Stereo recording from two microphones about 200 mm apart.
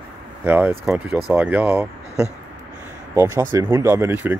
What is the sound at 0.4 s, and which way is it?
Speech, 10° right (ahead or behind).